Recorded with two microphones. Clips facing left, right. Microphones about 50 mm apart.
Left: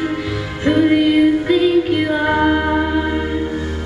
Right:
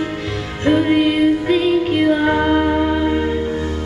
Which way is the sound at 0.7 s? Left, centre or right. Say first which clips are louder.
Left 1 dB; centre.